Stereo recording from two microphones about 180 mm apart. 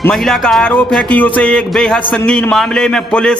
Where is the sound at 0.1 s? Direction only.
Centre (ahead or behind).